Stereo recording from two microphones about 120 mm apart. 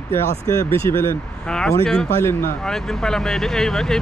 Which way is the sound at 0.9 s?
20° left (ahead or behind).